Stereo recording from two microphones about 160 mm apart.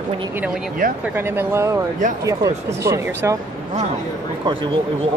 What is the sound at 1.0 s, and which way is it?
Speech, 15° right (ahead or behind).